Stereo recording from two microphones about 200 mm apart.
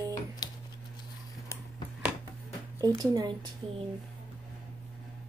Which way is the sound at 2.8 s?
20° right (ahead or behind).